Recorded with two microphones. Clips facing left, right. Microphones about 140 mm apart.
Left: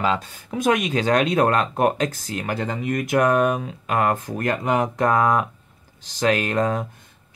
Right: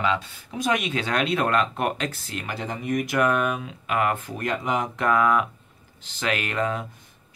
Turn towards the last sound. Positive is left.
turn(degrees=40)  # may be behind; listen again after turning